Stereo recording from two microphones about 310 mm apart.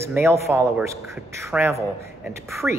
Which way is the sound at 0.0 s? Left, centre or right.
Centre.